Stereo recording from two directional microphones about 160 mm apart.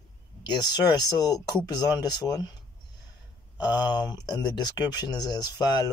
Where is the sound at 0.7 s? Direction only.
25° left (ahead or behind).